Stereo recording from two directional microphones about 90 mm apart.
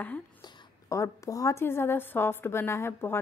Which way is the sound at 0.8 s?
35° left (ahead or behind).